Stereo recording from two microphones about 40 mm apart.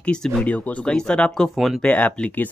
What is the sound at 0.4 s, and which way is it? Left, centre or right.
Speech, left.